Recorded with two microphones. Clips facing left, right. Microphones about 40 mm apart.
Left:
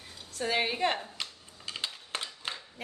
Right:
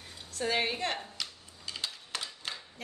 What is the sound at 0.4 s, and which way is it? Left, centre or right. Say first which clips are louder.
Speech: left 2 dB; centre.